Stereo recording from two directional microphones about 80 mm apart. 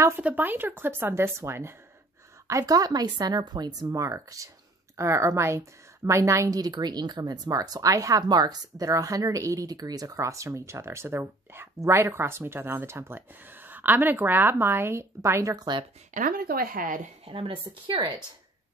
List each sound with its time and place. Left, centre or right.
0.2 s speech: right
2.4 s a woman's voice: right
3.9 s speech: right
6.6 s speech: right
15.5 s a woman's voice: right
17.3 s a woman's voice: right